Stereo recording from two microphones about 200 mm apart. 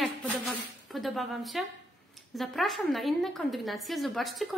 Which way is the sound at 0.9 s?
Centre (ahead or behind).